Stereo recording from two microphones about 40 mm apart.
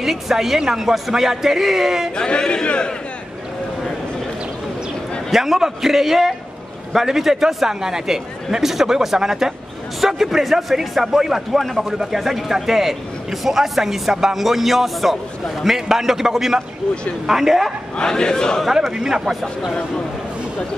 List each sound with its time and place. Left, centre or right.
0.0 s a man's voice: centre
2.1 s speech: left
5.3 s a man's voice: centre
17.9 s speech: centre
18.9 s a man's voice: centre